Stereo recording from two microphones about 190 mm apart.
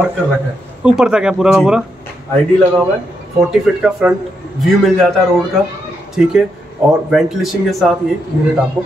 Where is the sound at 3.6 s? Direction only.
Centre (ahead or behind).